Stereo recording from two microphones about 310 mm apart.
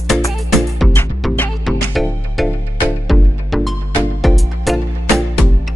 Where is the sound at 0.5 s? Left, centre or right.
Centre.